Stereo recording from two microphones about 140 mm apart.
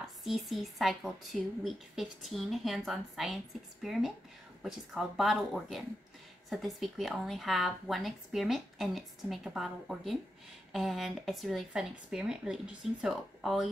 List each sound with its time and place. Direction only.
0.0 s speech: centre (ahead or behind)